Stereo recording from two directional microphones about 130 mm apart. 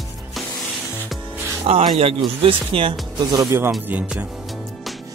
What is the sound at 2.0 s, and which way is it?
Speech, 50° right (ahead or behind).